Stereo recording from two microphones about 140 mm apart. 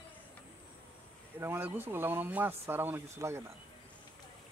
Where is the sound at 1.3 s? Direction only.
15° right (ahead or behind).